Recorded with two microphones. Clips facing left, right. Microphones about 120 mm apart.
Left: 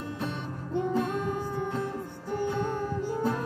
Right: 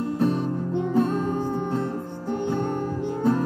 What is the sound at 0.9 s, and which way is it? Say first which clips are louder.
Music: right 9 dB; 35° right (ahead or behind).